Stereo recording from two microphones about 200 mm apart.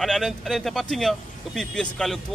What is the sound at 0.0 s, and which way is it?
Speech, centre (ahead or behind).